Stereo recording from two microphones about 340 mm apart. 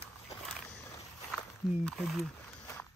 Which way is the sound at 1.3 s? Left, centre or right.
Centre.